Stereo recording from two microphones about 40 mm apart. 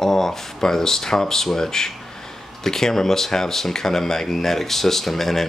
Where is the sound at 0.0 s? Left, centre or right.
Centre.